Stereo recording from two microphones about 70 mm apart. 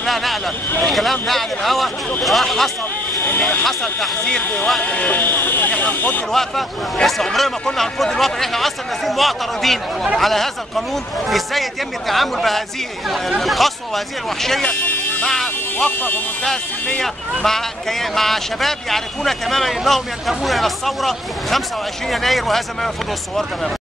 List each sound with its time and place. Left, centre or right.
0.0 s speech: centre
3.3 s speech: left
3.6 s speech: centre
4.4 s speech: left
6.3 s speech: centre
14.6 s vehicle: left
15.2 s a sound: centre
16.4 s speech: centre
17.0 s speech: centre